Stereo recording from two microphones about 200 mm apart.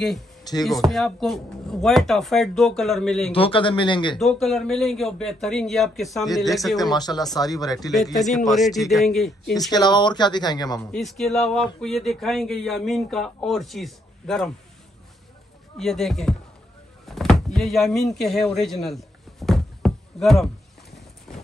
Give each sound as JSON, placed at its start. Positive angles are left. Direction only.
{"t": 0.4, "sound": "a sound", "side_deg": 20}
{"t": 0.7, "sound": "speech", "side_deg": 0}
{"t": 3.3, "sound": "speech", "side_deg": 25}
{"t": 4.2, "sound": "speech", "side_deg": 0}
{"t": 6.8, "sound": "speech", "side_deg": 20}
{"t": 7.9, "sound": "speech", "side_deg": 0}
{"t": 9.7, "sound": "speech", "side_deg": 20}
{"t": 10.8, "sound": "speech", "side_deg": 0}
{"t": 15.8, "sound": "speech", "side_deg": 0}
{"t": 17.1, "sound": "a sound", "side_deg": 0}